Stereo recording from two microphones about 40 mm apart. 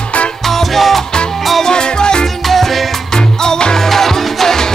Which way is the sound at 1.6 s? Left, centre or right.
Centre.